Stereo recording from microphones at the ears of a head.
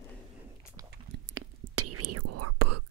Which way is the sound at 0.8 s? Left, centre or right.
Right.